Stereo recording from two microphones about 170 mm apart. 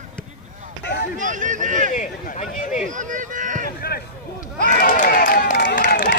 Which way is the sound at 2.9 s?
50° right (ahead or behind).